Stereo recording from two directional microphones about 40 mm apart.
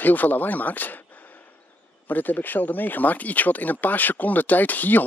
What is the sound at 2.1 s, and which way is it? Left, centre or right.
Speech, left.